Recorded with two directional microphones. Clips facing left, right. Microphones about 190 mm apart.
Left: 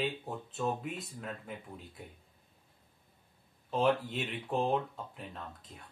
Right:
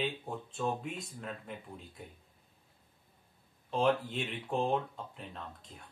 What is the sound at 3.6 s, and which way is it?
Speech, centre (ahead or behind).